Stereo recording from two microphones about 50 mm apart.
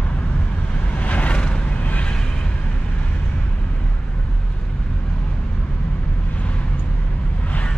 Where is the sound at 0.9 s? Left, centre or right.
Left.